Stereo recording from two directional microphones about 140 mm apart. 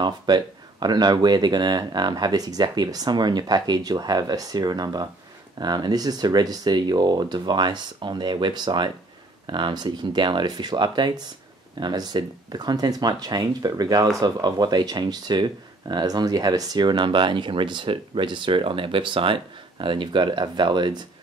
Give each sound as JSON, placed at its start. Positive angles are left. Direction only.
{"t": 0.0, "sound": "speech", "side_deg": -30}